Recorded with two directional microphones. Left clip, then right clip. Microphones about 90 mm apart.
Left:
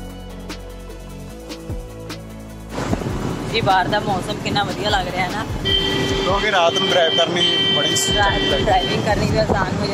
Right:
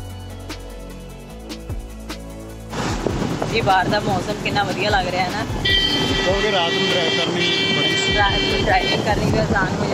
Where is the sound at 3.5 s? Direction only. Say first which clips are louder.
Left 1 dB; 10° left (ahead or behind).